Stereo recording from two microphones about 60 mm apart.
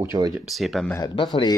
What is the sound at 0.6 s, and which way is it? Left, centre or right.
Speech, centre.